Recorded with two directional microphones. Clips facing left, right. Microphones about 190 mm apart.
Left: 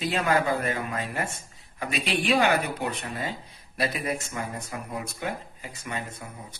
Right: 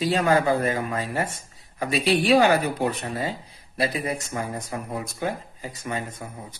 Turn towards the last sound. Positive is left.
turn(degrees=-35)  # may be behind; listen again after turning